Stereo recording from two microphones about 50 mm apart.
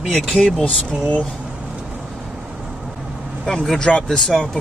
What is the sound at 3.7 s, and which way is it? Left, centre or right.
Speech, centre.